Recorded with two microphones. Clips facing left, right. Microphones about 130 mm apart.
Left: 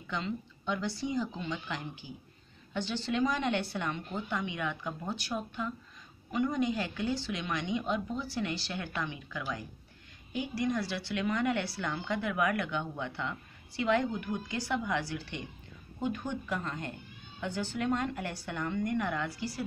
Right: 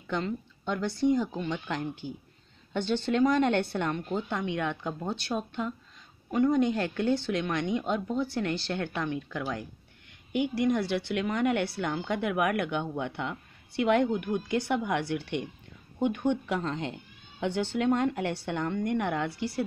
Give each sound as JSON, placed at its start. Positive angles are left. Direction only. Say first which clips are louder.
{"t": 0.1, "sound": "speech", "louder": "right 4 dB", "side_deg": -60}
{"t": 5.3, "sound": "speech", "louder": "right 4 dB", "side_deg": -35}
{"t": 6.3, "sound": "speech", "louder": "right 6 dB", "side_deg": -55}